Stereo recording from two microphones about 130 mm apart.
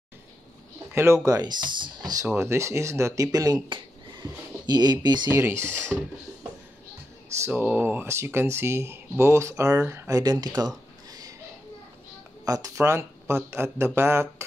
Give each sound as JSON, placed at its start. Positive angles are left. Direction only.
{"t": 0.9, "sound": "speech", "side_deg": -20}
{"t": 2.2, "sound": "speech", "side_deg": -20}
{"t": 3.6, "sound": "a sound", "side_deg": -35}
{"t": 5.0, "sound": "speech", "side_deg": -35}
{"t": 5.3, "sound": "speech", "side_deg": -20}
{"t": 7.3, "sound": "speech", "side_deg": -20}
{"t": 11.1, "sound": "a sound", "side_deg": -30}
{"t": 12.4, "sound": "speech", "side_deg": -25}